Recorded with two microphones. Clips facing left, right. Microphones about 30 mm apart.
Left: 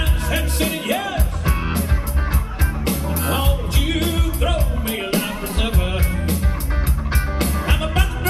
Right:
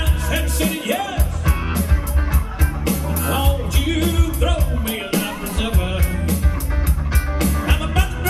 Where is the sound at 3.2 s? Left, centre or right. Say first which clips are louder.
Right 1 dB; left.